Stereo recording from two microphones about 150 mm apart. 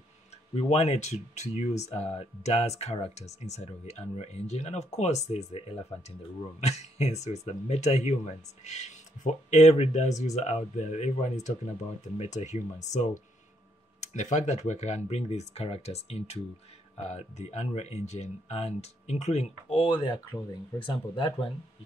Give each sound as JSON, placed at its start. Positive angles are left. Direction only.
{"t": 0.6, "sound": "speech", "side_deg": 45}